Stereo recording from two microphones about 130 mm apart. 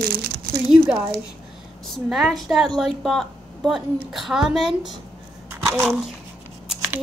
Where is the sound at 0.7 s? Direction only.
5° right (ahead or behind).